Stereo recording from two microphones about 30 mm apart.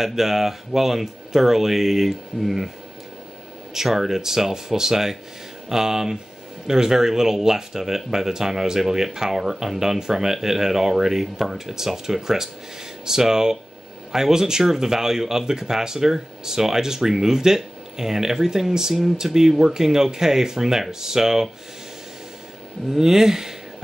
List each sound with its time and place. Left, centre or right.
0.0 s speech: centre
3.7 s speech: centre
22.8 s speech: centre